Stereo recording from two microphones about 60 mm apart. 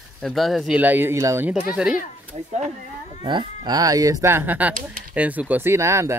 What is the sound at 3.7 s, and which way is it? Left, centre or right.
Speech, right.